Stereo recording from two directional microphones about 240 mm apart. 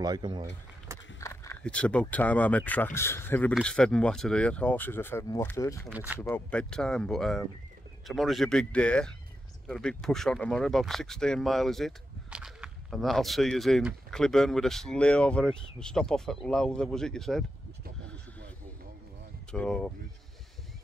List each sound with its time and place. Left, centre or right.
0.0 s speech: centre
1.2 s speech: centre
5.9 s speech: centre
6.2 s speech: centre
19.5 s speech: centre